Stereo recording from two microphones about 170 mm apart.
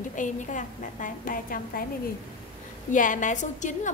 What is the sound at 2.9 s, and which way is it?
Speech, 50° left (ahead or behind).